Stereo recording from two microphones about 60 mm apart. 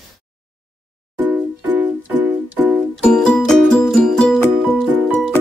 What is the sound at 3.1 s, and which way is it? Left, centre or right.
Music, centre.